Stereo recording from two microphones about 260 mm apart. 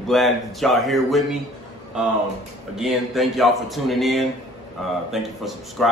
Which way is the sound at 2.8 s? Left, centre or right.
Centre.